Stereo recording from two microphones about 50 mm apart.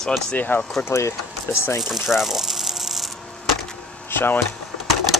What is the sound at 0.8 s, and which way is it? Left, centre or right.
Speech, left.